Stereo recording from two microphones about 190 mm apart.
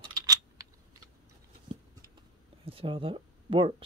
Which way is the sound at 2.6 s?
30° right (ahead or behind).